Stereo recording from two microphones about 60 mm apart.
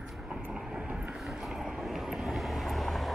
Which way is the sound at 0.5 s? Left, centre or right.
Centre.